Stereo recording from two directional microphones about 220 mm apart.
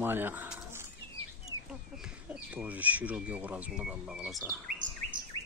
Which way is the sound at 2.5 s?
5° right (ahead or behind).